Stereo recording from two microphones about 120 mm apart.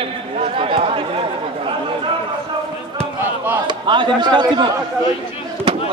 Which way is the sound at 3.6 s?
40° right (ahead or behind).